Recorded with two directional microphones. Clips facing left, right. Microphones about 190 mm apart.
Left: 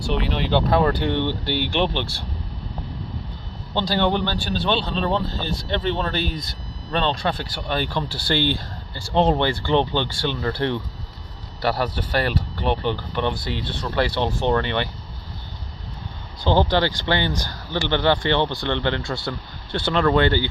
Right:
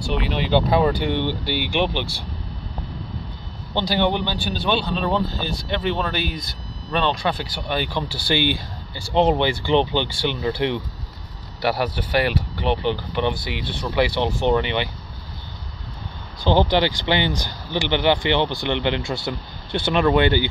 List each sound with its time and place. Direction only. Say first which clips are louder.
0.1 s speech: right 1 dB; centre (ahead or behind)
3.7 s speech: even; 15° right (ahead or behind)
16.4 s speech: right 1 dB; 15° right (ahead or behind)